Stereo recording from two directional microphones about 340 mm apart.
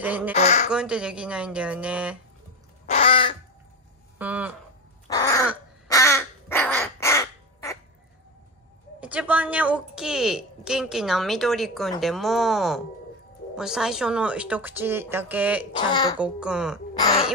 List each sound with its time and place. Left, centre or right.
0.0 s speech: centre
0.3 s speech: centre
0.7 s speech: centre
2.9 s crow: centre
4.2 s speech: centre
5.0 s crow: centre
9.0 s speech: centre
15.7 s speech: centre
16.2 s speech: centre
17.0 s speech: centre